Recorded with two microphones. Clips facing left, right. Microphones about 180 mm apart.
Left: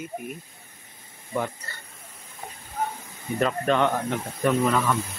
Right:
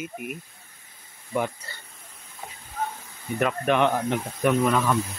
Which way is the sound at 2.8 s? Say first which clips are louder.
Left 1 dB; 10° left (ahead or behind).